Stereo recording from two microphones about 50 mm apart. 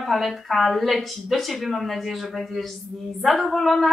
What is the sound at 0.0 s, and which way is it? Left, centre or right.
A woman's voice, centre.